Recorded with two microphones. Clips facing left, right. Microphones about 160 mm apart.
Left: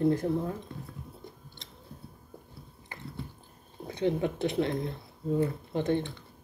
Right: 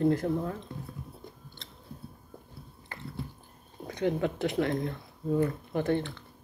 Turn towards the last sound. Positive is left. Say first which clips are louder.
# even
turn(degrees=20)  # may be behind; listen again after turning